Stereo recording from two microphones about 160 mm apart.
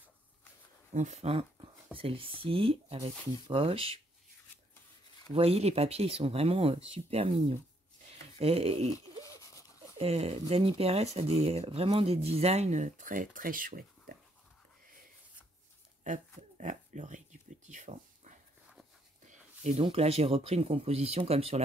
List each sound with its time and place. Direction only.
0.9 s speech: 45° right (ahead or behind)
5.3 s speech: 40° right (ahead or behind)
9.2 s a sound: 20° left (ahead or behind)
9.9 s speech: 40° right (ahead or behind); by 14.1 s 65° right (ahead or behind)
16.5 s dog: 50° right (ahead or behind)
19.2 s speech: 45° right (ahead or behind)